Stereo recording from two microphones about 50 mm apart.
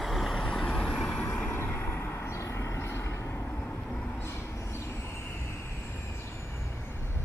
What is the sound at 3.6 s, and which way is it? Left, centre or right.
Vehicle, left.